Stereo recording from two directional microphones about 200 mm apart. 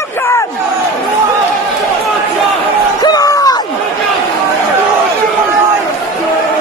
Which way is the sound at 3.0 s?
20° left (ahead or behind).